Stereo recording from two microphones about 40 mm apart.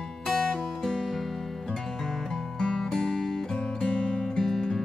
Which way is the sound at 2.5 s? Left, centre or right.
Centre.